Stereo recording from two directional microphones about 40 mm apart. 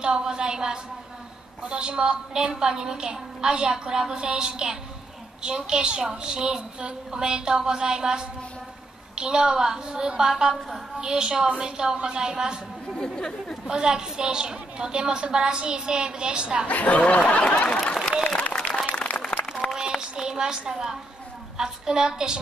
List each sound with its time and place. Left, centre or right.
0.0 s a woman's voice: right
13.0 s speech: centre
13.7 s a woman's voice: centre
16.6 s speech: left
18.4 s applause: left
19.0 s a sound: centre
20.0 s a sound: centre
21.5 s a woman's voice: centre